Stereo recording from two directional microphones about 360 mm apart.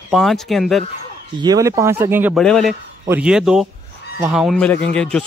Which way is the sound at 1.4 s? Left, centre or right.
Centre.